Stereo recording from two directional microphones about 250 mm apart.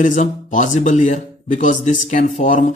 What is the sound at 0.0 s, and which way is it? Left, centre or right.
A man's voice, left.